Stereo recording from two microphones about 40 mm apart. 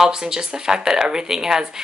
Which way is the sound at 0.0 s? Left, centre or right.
Centre.